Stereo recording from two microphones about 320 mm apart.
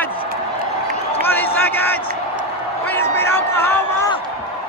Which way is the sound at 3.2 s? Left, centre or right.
Centre.